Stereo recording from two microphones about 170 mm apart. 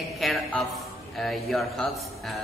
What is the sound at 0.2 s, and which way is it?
A woman's voice, centre (ahead or behind).